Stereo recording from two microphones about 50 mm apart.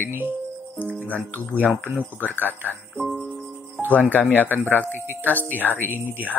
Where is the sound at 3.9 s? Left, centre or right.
Left.